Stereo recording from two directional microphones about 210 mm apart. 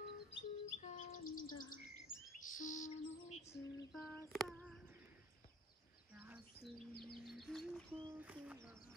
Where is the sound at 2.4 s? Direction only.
40° left (ahead or behind).